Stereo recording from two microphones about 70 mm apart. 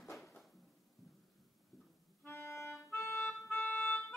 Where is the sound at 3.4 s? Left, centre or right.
Left.